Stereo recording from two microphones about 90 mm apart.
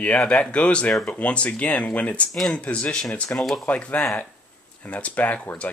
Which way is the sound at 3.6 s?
15° left (ahead or behind).